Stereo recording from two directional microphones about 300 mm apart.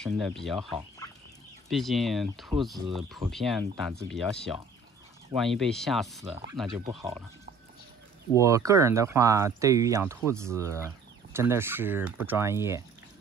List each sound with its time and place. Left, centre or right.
0.0 s speech: centre
1.7 s speech: centre
6.8 s speech: centre
8.4 s speech: centre